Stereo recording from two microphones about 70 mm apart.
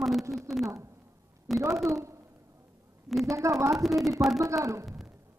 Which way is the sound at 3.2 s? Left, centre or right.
Right.